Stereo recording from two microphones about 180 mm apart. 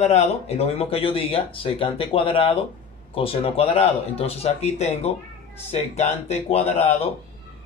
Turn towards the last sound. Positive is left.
turn(degrees=35)  # may be behind; listen again after turning